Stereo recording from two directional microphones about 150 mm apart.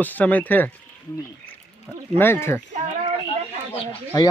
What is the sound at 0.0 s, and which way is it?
Speech, 10° left (ahead or behind).